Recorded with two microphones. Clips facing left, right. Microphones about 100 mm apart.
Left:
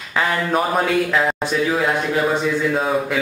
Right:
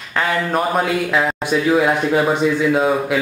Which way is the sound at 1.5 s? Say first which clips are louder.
Right 7 dB; 15° right (ahead or behind).